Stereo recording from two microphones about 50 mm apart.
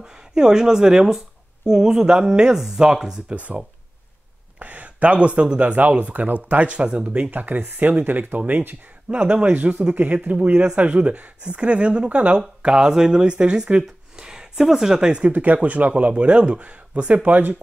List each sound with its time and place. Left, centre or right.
0.0 s speech: centre
4.6 s speech: right
7.2 s speech: right
9.1 s speech: right
9.9 s speech: right; by 15.2 s centre
15.2 s speech: right